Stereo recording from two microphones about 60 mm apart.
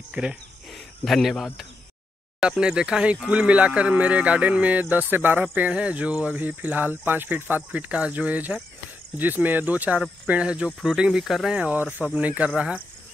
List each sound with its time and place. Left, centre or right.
0.1 s speech: centre
0.7 s cricket: centre
2.4 s speech: centre; by 5.7 s right
5.7 s speech: centre
11.1 s speech: centre
11.5 s speech: right